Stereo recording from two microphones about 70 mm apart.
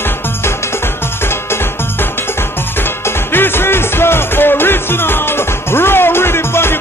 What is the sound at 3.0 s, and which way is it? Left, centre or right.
Music, left.